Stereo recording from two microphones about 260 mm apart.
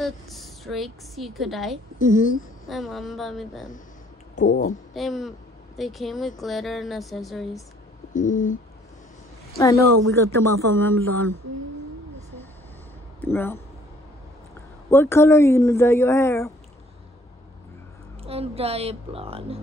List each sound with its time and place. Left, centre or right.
0.0 s a woman's voice: centre
2.0 s a sound: left
2.6 s speech: centre
4.9 s speech: centre
8.1 s a sound: left
9.6 s speech: centre
13.2 s speech: centre
14.9 s speech: centre
18.2 s a woman's voice: right